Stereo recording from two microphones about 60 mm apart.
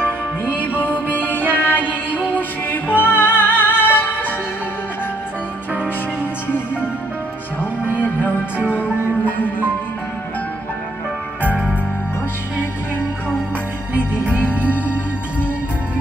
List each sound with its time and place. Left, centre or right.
0.5 s music: left
7.8 s music: right
9.2 s music: left
13.9 s music: right